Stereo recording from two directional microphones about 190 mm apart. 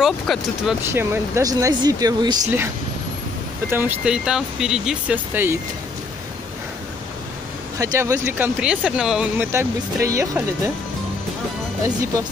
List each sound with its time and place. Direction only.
0.0 s speech: centre (ahead or behind)
0.9 s speech: 15° right (ahead or behind)
3.7 s speech: 5° right (ahead or behind)
7.8 s speech: 15° right (ahead or behind)